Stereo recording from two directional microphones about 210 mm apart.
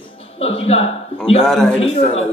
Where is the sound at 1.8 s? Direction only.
30° left (ahead or behind).